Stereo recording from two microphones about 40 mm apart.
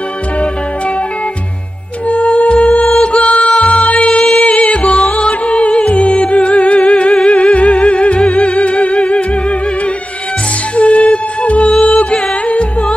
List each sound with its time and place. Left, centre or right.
2.0 s music: left
10.8 s music: left